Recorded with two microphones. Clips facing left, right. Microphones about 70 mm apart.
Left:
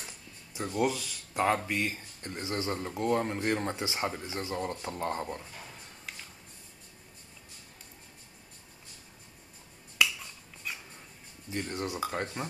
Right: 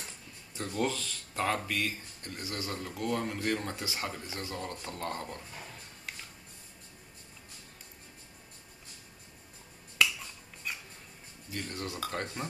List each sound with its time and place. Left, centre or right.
0.5 s speech: centre
11.5 s speech: left